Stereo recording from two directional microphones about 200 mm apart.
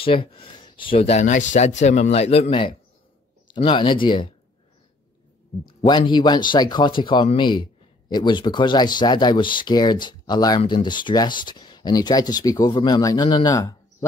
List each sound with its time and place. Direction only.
0.0 s speech: 25° left (ahead or behind)
5.7 s speech: 20° left (ahead or behind)